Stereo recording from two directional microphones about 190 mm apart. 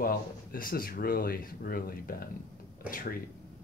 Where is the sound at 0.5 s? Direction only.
50° left (ahead or behind).